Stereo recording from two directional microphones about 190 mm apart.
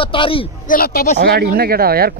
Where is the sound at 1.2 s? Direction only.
60° right (ahead or behind).